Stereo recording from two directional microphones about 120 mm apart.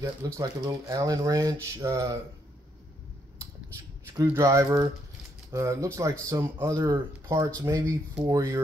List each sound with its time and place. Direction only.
0.0 s speech: 25° right (ahead or behind)
4.4 s speech: 25° right (ahead or behind)